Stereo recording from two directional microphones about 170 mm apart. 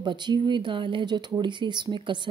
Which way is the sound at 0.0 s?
25° right (ahead or behind).